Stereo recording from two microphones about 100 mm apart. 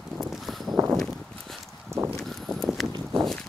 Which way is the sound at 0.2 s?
Centre (ahead or behind).